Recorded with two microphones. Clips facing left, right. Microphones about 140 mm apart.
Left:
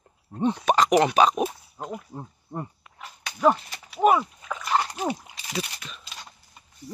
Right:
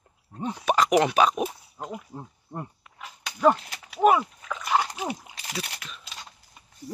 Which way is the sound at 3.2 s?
5° left (ahead or behind).